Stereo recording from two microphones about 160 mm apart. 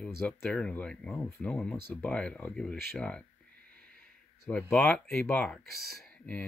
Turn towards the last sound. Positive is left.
turn(degrees=5)  # may be behind; listen again after turning